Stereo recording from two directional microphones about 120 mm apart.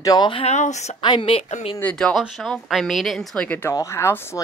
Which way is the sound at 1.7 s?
10° left (ahead or behind).